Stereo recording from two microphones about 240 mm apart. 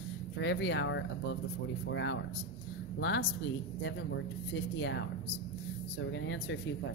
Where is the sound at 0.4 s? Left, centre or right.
Left.